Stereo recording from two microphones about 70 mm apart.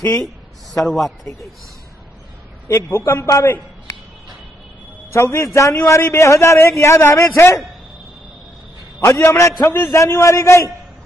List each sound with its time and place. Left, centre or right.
0.7 s a man's voice: centre
2.7 s a man's voice: left
5.1 s a man's voice: left
9.0 s a man's voice: left